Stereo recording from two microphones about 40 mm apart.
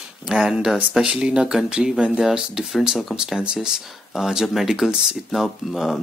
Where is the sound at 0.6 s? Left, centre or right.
Centre.